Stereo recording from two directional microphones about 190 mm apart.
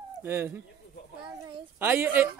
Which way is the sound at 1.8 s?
10° right (ahead or behind).